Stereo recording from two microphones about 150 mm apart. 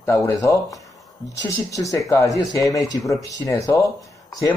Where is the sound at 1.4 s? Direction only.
20° left (ahead or behind).